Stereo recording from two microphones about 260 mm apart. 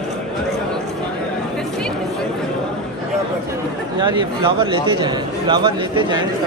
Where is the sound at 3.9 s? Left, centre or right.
Centre.